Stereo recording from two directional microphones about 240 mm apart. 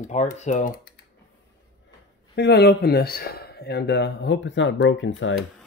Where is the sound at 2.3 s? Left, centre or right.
Left.